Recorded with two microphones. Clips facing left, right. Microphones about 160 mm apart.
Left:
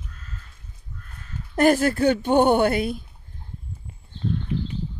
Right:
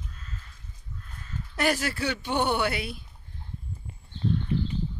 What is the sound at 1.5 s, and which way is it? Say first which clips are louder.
Speech: left 9 dB; 50° left (ahead or behind).